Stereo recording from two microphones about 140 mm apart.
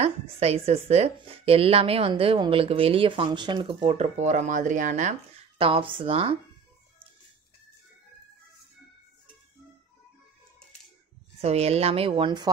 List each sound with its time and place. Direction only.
0.0 s a woman's voice: 45° right (ahead or behind)
3.9 s speech: 55° right (ahead or behind)
5.6 s speech: 40° right (ahead or behind)
11.4 s a woman's voice: 50° right (ahead or behind)
12.2 s speech: 30° right (ahead or behind)